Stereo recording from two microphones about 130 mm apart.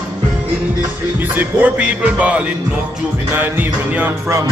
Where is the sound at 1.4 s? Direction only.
10° right (ahead or behind).